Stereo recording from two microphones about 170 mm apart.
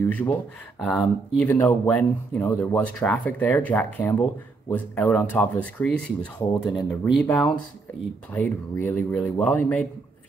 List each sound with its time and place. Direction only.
0.0 s speech: 10° left (ahead or behind)